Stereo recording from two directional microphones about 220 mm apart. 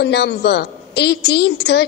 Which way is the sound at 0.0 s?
50° left (ahead or behind).